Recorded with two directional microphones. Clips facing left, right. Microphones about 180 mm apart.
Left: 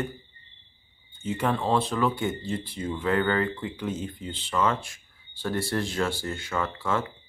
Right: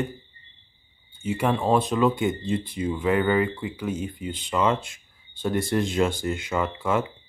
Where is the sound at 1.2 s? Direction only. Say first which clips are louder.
Right 3 dB; 10° right (ahead or behind).